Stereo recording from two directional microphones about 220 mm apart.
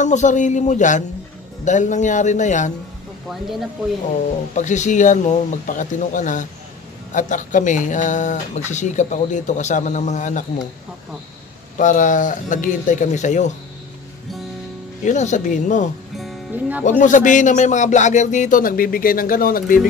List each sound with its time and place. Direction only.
0.0 s speech: 35° left (ahead or behind)
4.6 s speech: 35° left (ahead or behind)
11.8 s speech: 35° left (ahead or behind)
15.0 s speech: 35° left (ahead or behind)
16.2 s music: 5° right (ahead or behind)
17.0 s speech: 35° left (ahead or behind)